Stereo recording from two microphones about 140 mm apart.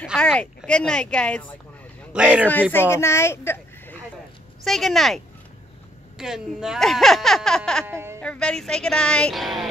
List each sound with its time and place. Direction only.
0.1 s speech: 10° left (ahead or behind)
2.1 s speech: 10° right (ahead or behind)
2.7 s a woman's voice: 15° left (ahead or behind)
4.6 s speech: centre (ahead or behind)
7.8 s speech: 20° right (ahead or behind)
8.2 s speech: 5° left (ahead or behind)